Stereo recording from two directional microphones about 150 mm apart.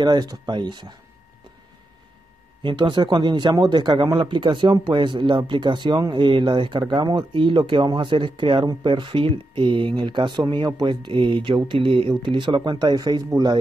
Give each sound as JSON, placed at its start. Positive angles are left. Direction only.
{"t": 0.0, "sound": "speech", "side_deg": -25}
{"t": 2.6, "sound": "speech", "side_deg": -30}